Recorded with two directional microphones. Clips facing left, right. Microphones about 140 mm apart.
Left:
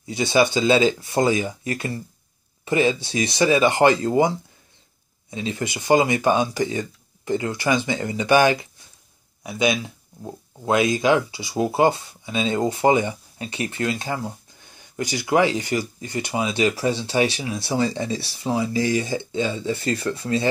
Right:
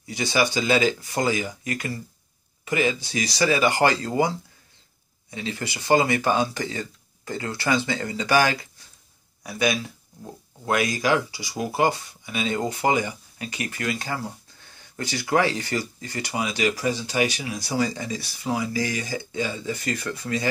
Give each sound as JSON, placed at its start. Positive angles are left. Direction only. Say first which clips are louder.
{"t": 0.0, "sound": "speech", "louder": "left 5 dB", "side_deg": 25}
{"t": 5.3, "sound": "speech", "louder": "left 4 dB", "side_deg": 20}